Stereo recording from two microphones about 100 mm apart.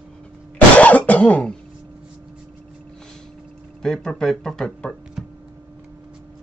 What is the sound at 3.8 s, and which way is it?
Speech, 5° left (ahead or behind).